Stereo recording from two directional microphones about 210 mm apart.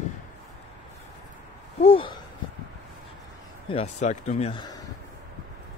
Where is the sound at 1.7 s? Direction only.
25° left (ahead or behind).